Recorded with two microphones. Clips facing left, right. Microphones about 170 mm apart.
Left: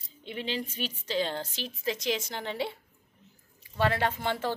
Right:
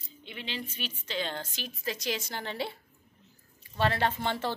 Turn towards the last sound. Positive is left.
turn(degrees=10)  # may be behind; listen again after turning